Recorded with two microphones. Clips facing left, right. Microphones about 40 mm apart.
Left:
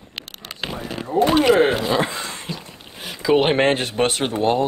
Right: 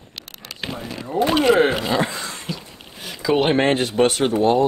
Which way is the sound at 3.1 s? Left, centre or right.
Centre.